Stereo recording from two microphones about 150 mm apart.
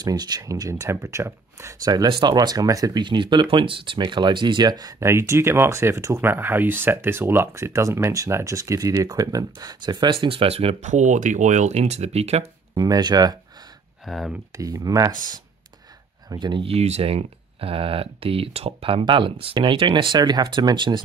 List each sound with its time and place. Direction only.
0.0 s speech: 25° right (ahead or behind)
10.2 s speech: 40° right (ahead or behind)
12.7 s speech: 25° right (ahead or behind)
14.0 s speech: centre (ahead or behind)
14.5 s speech: 20° right (ahead or behind)
16.3 s speech: 30° right (ahead or behind)